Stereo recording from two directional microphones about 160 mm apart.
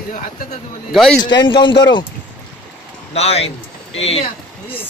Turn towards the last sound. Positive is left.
turn(degrees=40)  # may be behind; listen again after turning